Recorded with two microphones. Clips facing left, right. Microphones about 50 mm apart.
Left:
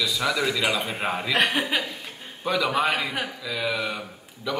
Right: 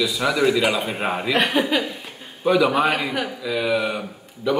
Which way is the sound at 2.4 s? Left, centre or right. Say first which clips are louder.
Right 6 dB; centre.